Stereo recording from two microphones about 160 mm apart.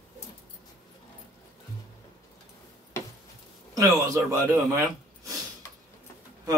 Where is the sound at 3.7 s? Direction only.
20° right (ahead or behind).